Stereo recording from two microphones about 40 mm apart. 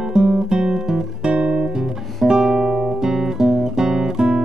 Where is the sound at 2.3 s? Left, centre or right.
Centre.